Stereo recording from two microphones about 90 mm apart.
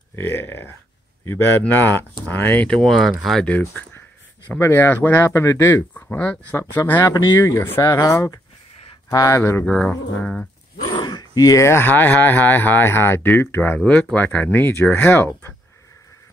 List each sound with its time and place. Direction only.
0.1 s speech: 25° left (ahead or behind)
2.8 s speech: centre (ahead or behind)
3.4 s speech: 15° left (ahead or behind)
4.6 s speech: 25° left (ahead or behind)
5.9 s speech: 15° left (ahead or behind)
7.3 s speech: 35° left (ahead or behind)
7.8 s speech: 40° left (ahead or behind)
9.7 s speech: 10° left (ahead or behind)
10.8 s speech: 55° left (ahead or behind); by 15.3 s 20° left (ahead or behind)